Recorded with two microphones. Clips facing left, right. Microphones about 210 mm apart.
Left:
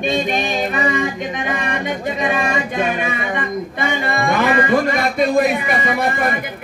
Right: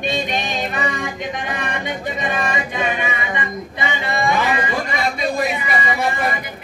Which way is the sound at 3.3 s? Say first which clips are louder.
Left 4 dB; 50° left (ahead or behind).